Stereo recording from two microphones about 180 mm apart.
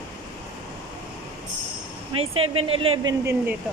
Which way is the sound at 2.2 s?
30° right (ahead or behind).